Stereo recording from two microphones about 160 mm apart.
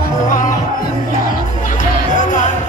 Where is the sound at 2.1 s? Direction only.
50° left (ahead or behind).